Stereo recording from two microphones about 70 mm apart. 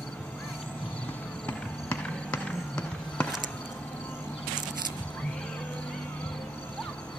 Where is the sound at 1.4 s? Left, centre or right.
Left.